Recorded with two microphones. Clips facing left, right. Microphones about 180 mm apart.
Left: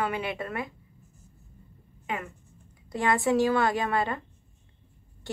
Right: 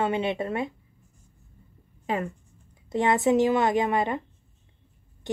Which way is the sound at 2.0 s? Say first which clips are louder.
Right 6 dB; 35° right (ahead or behind).